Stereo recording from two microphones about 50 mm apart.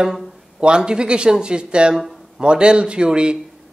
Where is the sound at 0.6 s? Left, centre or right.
Centre.